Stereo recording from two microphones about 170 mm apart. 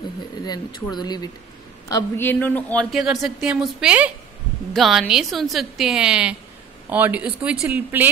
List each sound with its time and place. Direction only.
0.5 s a man's voice: 25° left (ahead or behind); by 8.1 s 10° right (ahead or behind)